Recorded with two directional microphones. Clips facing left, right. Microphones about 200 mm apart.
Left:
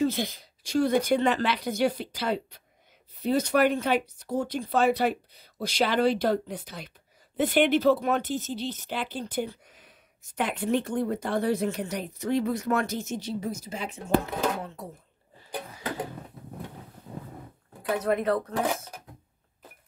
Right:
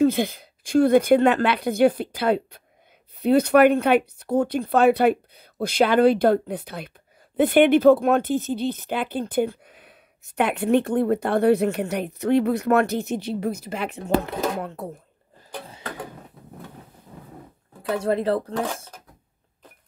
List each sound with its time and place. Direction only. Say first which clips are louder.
0.0 s speech: right 7 dB; 55° right (ahead or behind)
17.8 s speech: right 3 dB; 30° right (ahead or behind)